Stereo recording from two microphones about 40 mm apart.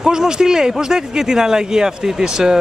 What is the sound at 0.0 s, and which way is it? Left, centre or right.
Speech, centre.